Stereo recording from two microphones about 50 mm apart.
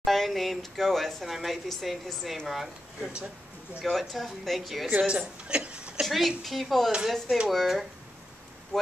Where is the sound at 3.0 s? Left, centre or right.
Centre.